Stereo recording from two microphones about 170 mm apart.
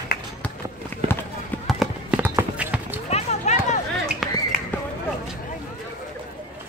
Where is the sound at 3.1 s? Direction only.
40° left (ahead or behind).